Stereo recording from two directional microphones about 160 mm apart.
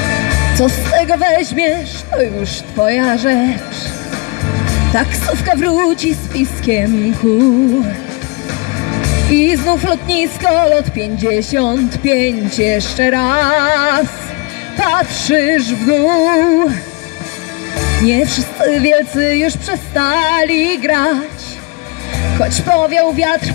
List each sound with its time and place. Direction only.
0.0 s music: 45° left (ahead or behind)
4.1 s speech: 40° left (ahead or behind)
8.5 s speech: 40° left (ahead or behind)